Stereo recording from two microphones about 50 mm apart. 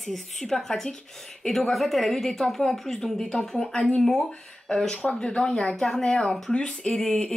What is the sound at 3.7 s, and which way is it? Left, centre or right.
Speech, left.